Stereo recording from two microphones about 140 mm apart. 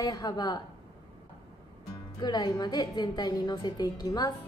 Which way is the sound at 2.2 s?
30° left (ahead or behind).